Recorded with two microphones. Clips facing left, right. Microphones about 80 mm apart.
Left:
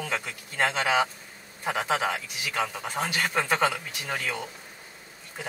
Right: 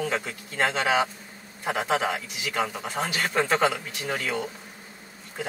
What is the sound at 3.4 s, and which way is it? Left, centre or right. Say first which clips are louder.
Speech: right 4 dB; centre.